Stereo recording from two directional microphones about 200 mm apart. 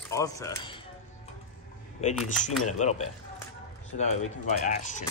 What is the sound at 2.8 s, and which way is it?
Speech, 35° left (ahead or behind).